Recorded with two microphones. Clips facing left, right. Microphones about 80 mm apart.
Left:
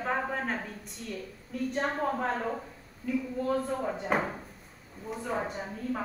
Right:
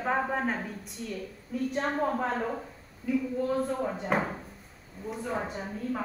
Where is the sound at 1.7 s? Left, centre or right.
Centre.